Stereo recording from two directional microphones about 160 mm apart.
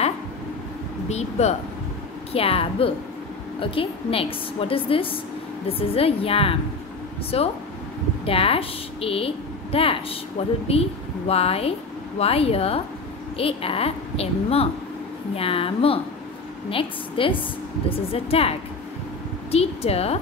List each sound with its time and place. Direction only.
1.0 s a woman's voice: 45° left (ahead or behind)
19.5 s a woman's voice: 40° left (ahead or behind)